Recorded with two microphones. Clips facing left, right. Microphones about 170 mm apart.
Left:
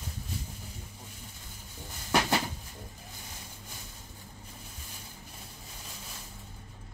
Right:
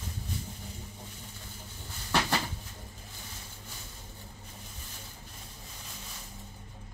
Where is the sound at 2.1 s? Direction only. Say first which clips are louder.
Left 2 dB; 15° left (ahead or behind).